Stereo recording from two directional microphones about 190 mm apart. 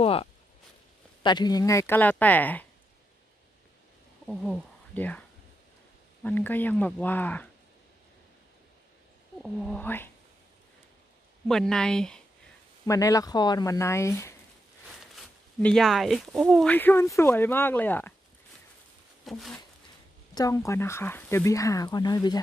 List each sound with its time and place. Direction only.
0.0 s speech: 30° left (ahead or behind); by 2.6 s 10° left (ahead or behind)
4.3 s speech: 5° left (ahead or behind)
6.2 s speech: 10° left (ahead or behind)
9.4 s speech: centre (ahead or behind)
11.4 s speech: 5° left (ahead or behind)
12.8 s speech: 15° left (ahead or behind)
15.0 s speech: centre (ahead or behind)
19.2 s speech: centre (ahead or behind)
20.3 s speech: 15° left (ahead or behind)